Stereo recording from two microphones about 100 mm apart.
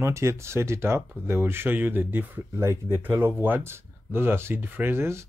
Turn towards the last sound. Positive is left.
turn(degrees=-25)  # may be behind; listen again after turning